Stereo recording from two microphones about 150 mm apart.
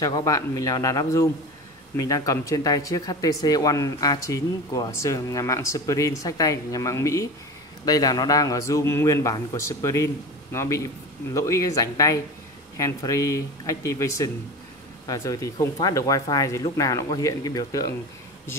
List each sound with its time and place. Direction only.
0.0 s speech: 25° left (ahead or behind)